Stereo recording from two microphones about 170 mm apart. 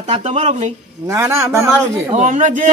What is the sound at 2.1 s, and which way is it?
Speech, 45° right (ahead or behind).